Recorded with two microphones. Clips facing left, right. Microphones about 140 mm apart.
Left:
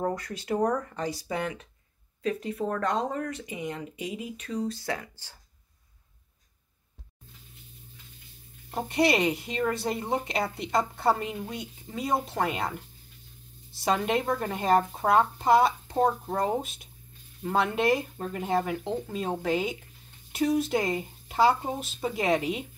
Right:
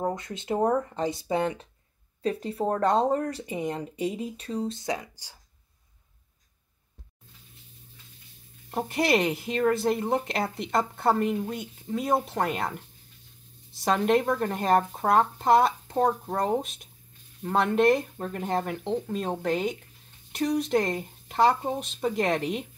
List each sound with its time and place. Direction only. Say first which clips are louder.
0.0 s speech: even; 20° right (ahead or behind)
8.8 s a woman's voice: even; centre (ahead or behind)